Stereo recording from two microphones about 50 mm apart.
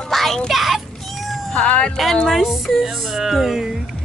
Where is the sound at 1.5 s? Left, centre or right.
Left.